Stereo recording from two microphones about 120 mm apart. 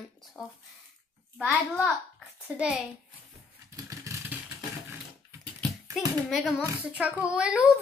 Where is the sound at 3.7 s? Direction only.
25° right (ahead or behind).